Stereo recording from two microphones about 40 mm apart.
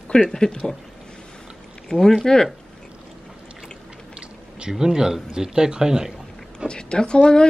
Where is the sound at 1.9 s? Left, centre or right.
Centre.